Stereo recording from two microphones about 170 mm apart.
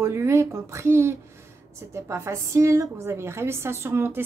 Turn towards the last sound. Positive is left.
turn(degrees=-15)  # may be behind; listen again after turning